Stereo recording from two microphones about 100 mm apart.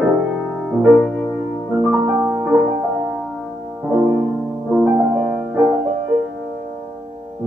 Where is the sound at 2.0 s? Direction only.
25° right (ahead or behind).